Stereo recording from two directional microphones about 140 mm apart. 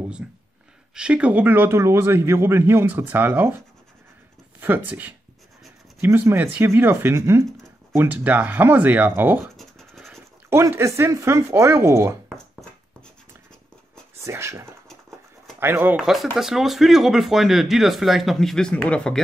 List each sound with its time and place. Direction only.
0.2 s a man's voice: 10° right (ahead or behind)
9.6 s scratch: centre (ahead or behind)
10.5 s speech: 20° right (ahead or behind)
14.2 s speech: 20° right (ahead or behind)
14.9 s a sound: 5° left (ahead or behind)
15.6 s a man's voice: 15° right (ahead or behind)
16.0 s speech: centre (ahead or behind)